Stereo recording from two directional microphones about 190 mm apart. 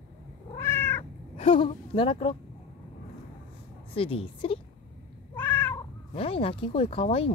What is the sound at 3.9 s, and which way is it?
Speech, 30° left (ahead or behind).